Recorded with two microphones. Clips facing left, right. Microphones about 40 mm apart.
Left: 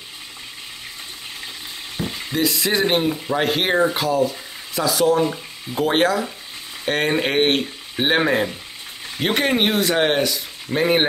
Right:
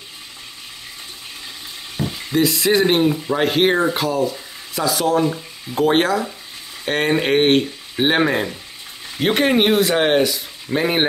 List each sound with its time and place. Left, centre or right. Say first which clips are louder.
2.0 s frying: right 3 dB; right
2.3 s speech: right 4 dB; centre